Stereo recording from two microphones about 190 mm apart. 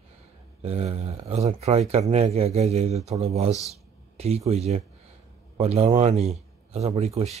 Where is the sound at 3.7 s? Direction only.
35° right (ahead or behind).